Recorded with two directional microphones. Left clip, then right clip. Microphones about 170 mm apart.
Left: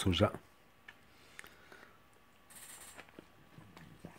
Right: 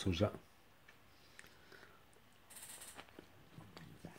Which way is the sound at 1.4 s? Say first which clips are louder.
Left 7 dB; 30° left (ahead or behind).